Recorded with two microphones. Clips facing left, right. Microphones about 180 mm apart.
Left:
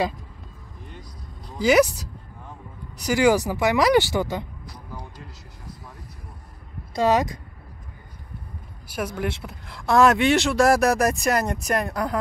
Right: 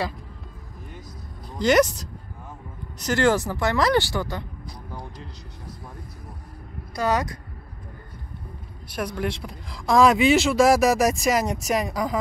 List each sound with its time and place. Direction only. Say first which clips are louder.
1.6 s speech: left 1 dB; 5° left (ahead or behind)
7.0 s speech: left 4 dB; 20° left (ahead or behind)
8.9 s speech: even; 5° left (ahead or behind)